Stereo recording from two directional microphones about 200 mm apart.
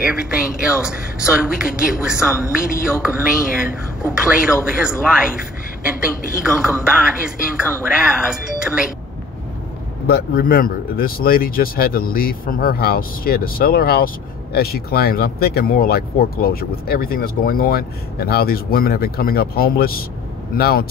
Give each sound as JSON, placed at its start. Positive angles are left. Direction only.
{"t": 0.0, "sound": "speech", "side_deg": -5}
{"t": 6.4, "sound": "speech", "side_deg": -5}
{"t": 10.0, "sound": "speech", "side_deg": 50}